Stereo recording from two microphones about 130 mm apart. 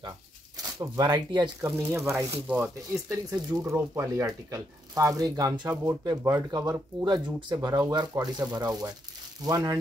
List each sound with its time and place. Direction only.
0.7 s speech: 35° right (ahead or behind)
1.6 s speech: 20° right (ahead or behind)